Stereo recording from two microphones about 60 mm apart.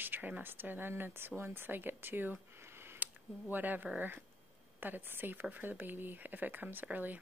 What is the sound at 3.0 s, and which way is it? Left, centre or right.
Speech, right.